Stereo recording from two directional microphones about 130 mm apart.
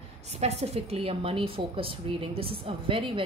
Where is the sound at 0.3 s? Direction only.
55° right (ahead or behind).